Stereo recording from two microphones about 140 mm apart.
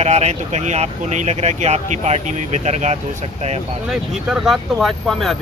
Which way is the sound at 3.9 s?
5° right (ahead or behind).